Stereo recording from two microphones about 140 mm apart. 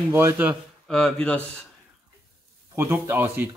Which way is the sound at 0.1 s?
20° right (ahead or behind).